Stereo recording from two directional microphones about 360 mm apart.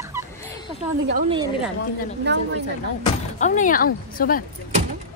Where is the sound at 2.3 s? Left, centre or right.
Right.